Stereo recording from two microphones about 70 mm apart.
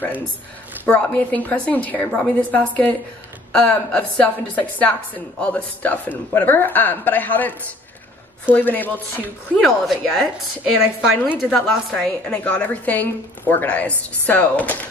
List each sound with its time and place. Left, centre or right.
0.8 s a woman's voice: left
9.6 s a woman's voice: centre
11.0 s a woman's voice: centre
12.0 s a woman's voice: centre